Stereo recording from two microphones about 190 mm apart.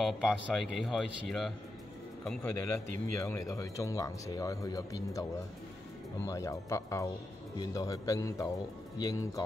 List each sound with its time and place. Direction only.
0.0 s speech: centre (ahead or behind); by 5.2 s 20° left (ahead or behind)
6.2 s speech: 15° left (ahead or behind)